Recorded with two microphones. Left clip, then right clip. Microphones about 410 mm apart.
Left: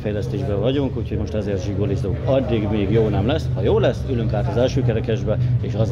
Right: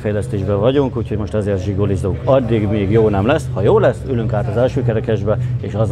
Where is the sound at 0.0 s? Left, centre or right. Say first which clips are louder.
Right 4 dB; right.